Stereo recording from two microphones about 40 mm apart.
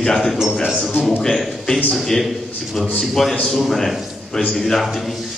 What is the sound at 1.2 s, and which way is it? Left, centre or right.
Speech, centre.